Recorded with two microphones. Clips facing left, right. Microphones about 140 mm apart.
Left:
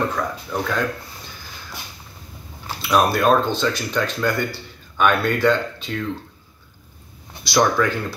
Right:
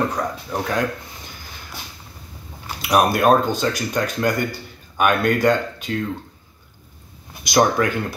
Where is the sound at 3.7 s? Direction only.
40° right (ahead or behind).